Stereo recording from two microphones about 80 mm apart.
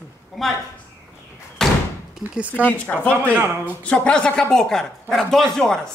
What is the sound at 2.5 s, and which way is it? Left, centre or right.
Speech, left.